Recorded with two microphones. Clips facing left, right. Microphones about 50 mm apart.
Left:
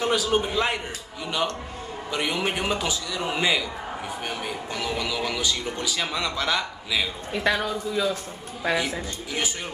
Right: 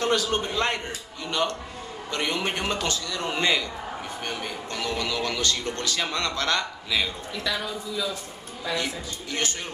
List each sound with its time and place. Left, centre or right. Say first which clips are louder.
0.0 s a man's voice: left 1 dB; centre
7.3 s a man's voice: left 7 dB; left
9.3 s speech: even; centre